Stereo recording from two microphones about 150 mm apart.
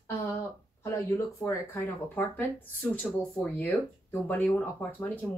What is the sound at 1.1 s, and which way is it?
Speech, 20° left (ahead or behind).